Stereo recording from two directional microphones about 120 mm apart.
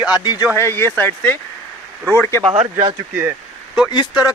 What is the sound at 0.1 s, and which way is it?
Speech, 35° left (ahead or behind).